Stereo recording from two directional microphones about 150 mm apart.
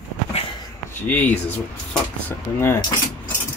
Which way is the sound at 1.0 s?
10° left (ahead or behind).